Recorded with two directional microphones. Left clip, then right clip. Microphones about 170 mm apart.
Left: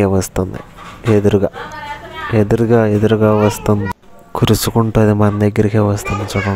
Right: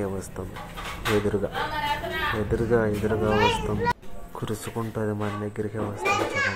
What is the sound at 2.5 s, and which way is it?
Speech, 55° left (ahead or behind).